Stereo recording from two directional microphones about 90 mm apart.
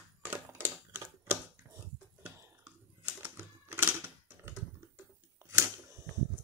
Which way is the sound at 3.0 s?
20° right (ahead or behind).